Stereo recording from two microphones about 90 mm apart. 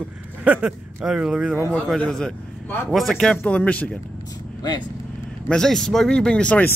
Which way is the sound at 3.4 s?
15° left (ahead or behind).